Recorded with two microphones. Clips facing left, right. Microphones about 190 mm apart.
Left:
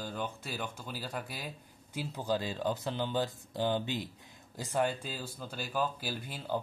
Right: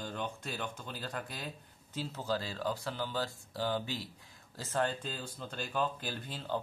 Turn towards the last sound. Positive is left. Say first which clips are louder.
# left 1 dB
turn(degrees=10)  # may be behind; listen again after turning